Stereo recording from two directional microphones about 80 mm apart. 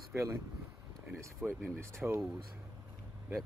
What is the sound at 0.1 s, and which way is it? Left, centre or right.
Speech, right.